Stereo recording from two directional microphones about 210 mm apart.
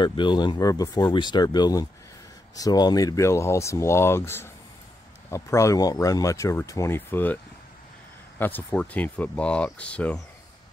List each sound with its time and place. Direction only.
0.0 s speech: 20° left (ahead or behind)
8.4 s speech: 10° left (ahead or behind)